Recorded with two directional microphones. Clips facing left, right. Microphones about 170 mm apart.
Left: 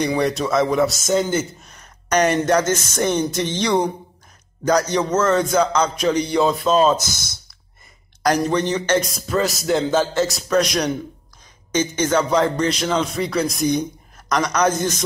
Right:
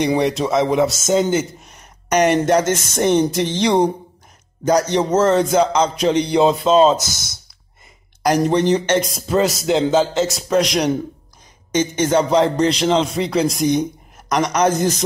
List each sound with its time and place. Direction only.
0.0 s a man's voice: 20° right (ahead or behind)
8.5 s a man's voice: 25° right (ahead or behind)
12.0 s a man's voice: 25° right (ahead or behind)